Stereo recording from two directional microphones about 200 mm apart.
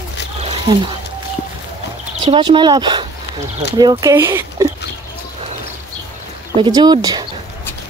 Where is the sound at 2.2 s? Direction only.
25° right (ahead or behind).